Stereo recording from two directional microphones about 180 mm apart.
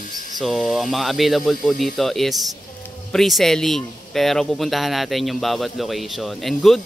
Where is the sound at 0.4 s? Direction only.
Centre (ahead or behind).